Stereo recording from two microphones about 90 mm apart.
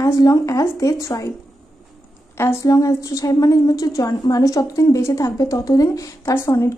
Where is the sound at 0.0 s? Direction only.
35° left (ahead or behind).